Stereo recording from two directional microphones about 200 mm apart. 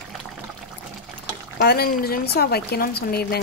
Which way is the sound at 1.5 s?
50° left (ahead or behind).